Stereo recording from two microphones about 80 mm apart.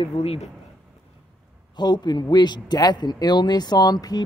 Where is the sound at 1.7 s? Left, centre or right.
Left.